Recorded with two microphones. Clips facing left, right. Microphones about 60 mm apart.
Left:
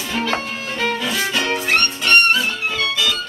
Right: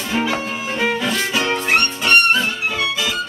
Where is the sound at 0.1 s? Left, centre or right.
Centre.